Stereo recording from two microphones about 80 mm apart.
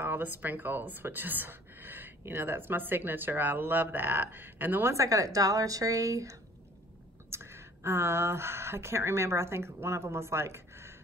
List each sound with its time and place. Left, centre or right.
0.0 s speech: right
4.9 s a woman's voice: right
7.2 s speech: right